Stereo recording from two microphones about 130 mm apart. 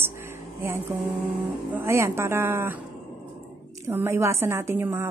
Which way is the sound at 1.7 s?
20° right (ahead or behind).